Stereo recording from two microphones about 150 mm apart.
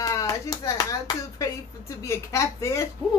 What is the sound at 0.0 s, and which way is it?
A child's voice, 25° left (ahead or behind).